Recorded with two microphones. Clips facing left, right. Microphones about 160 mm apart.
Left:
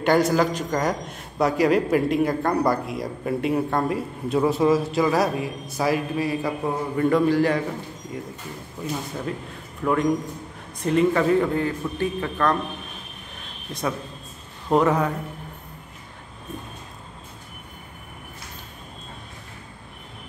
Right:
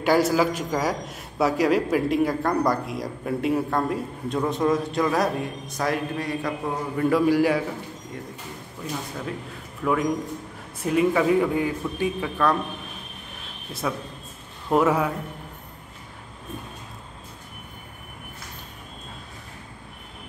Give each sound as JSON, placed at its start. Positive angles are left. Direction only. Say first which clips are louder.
{"t": 0.0, "sound": "a man's voice", "louder": "left 1 dB", "side_deg": -5}
{"t": 7.1, "sound": "a man's voice", "louder": "even", "side_deg": -10}
{"t": 9.8, "sound": "a man's voice", "louder": "left 1 dB", "side_deg": 5}
{"t": 10.8, "sound": "a man's voice", "louder": "left 1 dB", "side_deg": -5}
{"t": 14.7, "sound": "a man's voice", "louder": "left 1 dB", "side_deg": -5}